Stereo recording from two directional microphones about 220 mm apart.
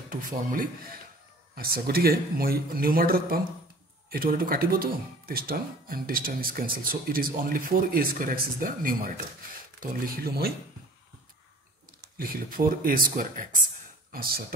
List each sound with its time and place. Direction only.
0.1 s speech: 40° right (ahead or behind)
12.2 s speech: 40° right (ahead or behind)